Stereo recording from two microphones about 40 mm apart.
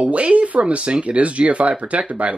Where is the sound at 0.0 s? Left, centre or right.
Right.